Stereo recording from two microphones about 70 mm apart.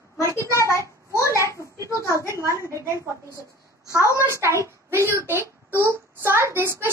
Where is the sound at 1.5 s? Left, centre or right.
Right.